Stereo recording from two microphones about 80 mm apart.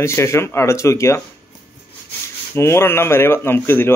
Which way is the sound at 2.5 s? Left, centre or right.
Left.